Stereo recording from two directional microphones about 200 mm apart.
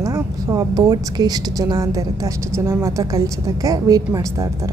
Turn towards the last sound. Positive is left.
turn(degrees=-20)  # may be behind; listen again after turning